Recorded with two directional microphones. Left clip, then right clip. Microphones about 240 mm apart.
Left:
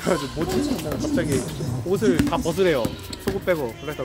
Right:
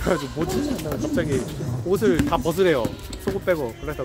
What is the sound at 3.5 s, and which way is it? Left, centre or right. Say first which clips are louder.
Speech: even; centre.